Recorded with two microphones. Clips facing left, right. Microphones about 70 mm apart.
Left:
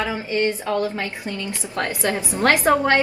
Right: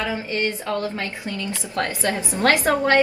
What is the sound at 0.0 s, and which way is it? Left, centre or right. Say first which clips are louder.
A woman's voice: left 2 dB; centre.